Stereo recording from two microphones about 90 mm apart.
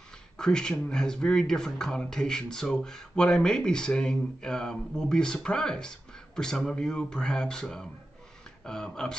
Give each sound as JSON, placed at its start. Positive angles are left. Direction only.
{"t": 0.4, "sound": "speech", "side_deg": 5}